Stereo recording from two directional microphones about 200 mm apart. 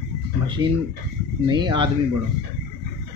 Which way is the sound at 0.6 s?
20° right (ahead or behind).